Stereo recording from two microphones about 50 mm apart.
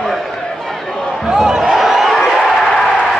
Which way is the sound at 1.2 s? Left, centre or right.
Centre.